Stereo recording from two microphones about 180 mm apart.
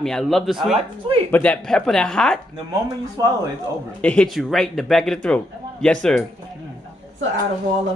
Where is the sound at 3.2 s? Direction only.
20° right (ahead or behind).